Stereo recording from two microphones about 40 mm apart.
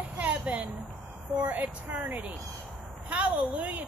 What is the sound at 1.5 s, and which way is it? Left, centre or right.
Speech, right.